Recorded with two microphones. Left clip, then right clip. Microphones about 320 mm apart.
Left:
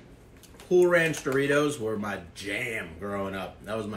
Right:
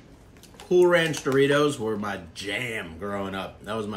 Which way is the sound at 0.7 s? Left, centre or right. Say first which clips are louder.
Right 2 dB; centre.